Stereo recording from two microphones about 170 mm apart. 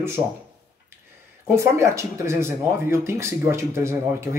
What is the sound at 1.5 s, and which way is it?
A man's voice, 15° right (ahead or behind).